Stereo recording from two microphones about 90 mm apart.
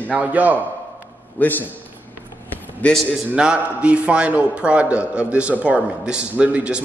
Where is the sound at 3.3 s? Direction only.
10° right (ahead or behind).